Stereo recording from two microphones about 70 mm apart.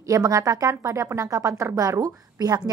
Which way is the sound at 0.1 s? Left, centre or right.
Right.